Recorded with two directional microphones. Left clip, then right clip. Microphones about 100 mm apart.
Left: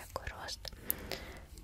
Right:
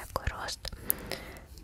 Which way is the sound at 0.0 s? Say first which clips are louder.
Right 7 dB; 45° right (ahead or behind).